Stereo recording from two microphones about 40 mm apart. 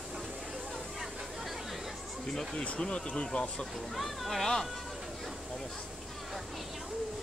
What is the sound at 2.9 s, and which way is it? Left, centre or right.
Speech, left.